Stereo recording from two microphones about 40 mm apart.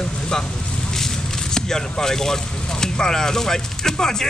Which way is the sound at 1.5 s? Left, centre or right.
Centre.